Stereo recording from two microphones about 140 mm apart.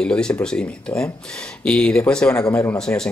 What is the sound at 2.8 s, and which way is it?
Speech, 5° left (ahead or behind).